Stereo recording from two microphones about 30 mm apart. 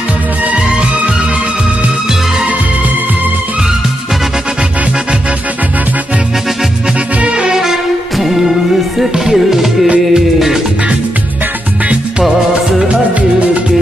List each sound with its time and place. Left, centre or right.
7.2 s music: right
7.5 s music: centre
9.2 s music: centre